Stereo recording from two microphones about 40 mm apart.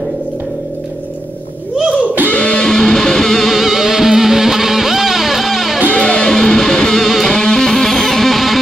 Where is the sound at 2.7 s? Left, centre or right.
Centre.